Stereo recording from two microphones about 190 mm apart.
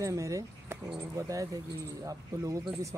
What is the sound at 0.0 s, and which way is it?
Speech, 15° right (ahead or behind).